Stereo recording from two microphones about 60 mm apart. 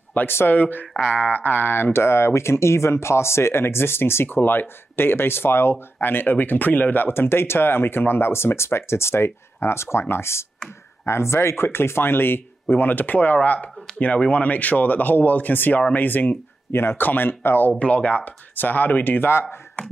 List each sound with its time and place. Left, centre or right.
0.1 s speech: left
17.6 s speech: left